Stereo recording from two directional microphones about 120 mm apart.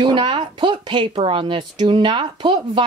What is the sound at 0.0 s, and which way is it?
A woman's voice, 40° right (ahead or behind).